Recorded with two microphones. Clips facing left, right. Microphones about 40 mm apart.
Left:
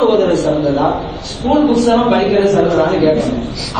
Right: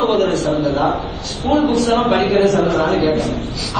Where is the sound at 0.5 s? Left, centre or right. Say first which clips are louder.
Left 3 dB; left.